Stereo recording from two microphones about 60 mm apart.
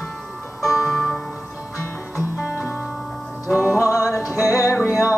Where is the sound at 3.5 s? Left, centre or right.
Right.